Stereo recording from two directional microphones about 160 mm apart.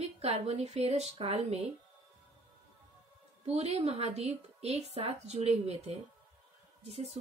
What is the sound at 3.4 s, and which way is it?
A woman's voice, 40° right (ahead or behind).